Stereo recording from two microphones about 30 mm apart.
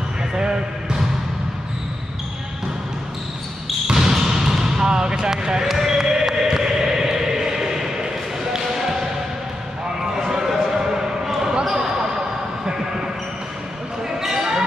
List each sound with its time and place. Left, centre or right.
0.3 s basketball bounce: right
3.8 s basketball bounce: centre
10.5 s basketball bounce: centre
14.2 s basketball bounce: centre